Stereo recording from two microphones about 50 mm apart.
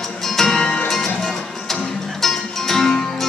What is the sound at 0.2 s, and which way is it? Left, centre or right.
Music, centre.